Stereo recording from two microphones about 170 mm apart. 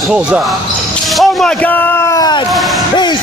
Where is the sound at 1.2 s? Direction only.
5° left (ahead or behind).